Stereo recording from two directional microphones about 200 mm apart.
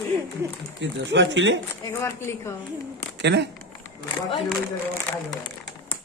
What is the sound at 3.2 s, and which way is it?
Speech, 60° right (ahead or behind).